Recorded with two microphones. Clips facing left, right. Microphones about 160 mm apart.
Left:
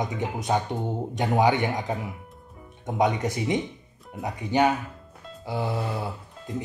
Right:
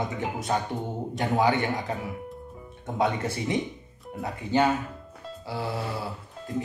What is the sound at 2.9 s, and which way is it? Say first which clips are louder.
Speech: left 2 dB; 15° left (ahead or behind).